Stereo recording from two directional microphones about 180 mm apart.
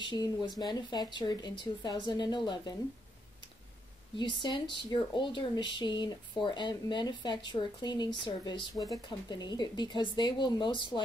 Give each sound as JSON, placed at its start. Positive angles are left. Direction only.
{"t": 0.0, "sound": "speech", "side_deg": 25}
{"t": 4.2, "sound": "speech", "side_deg": 25}